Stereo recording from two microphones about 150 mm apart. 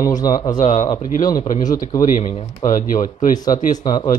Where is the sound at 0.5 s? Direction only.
50° left (ahead or behind).